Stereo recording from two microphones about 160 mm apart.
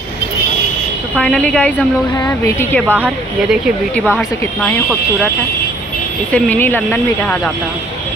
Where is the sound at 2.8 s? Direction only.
10° right (ahead or behind).